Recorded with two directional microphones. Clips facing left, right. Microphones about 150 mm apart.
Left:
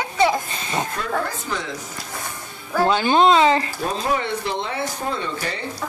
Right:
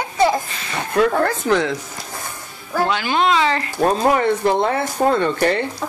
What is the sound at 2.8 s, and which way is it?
Speech, 30° left (ahead or behind).